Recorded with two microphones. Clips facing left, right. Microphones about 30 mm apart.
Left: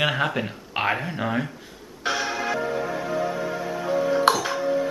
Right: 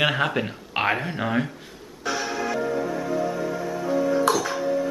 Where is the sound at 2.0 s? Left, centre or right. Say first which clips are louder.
Left 1 dB; left.